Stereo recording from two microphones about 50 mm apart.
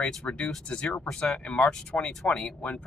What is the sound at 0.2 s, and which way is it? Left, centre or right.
Speech, centre.